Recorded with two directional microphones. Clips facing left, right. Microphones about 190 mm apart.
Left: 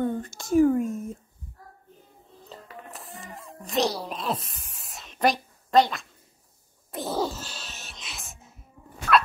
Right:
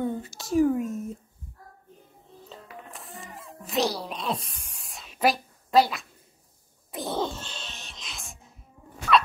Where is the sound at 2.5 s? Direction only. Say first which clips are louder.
Left 1 dB; centre (ahead or behind).